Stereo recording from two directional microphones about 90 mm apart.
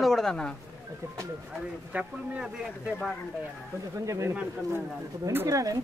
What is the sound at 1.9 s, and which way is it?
Speech, 15° right (ahead or behind).